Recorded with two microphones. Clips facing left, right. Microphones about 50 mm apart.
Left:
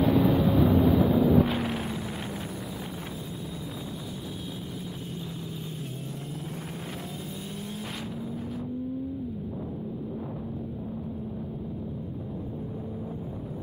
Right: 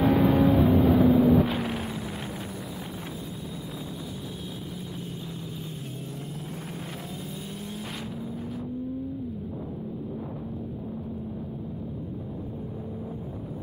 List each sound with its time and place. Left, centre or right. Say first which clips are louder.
0.0 s vehicle: right 2 dB; right
1.3 s vehicle: even; centre